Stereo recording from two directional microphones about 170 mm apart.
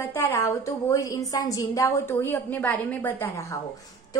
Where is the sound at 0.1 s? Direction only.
15° left (ahead or behind).